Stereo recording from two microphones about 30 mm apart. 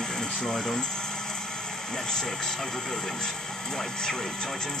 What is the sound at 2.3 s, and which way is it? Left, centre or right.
Speech, centre.